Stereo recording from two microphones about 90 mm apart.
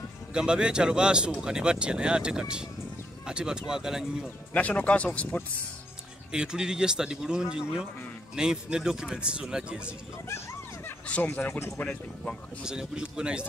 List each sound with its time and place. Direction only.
0.3 s speech: 10° right (ahead or behind)
4.6 s speech: 15° left (ahead or behind)
6.3 s speech: 10° right (ahead or behind)
11.1 s speech: 15° left (ahead or behind)
12.6 s speech: 10° right (ahead or behind)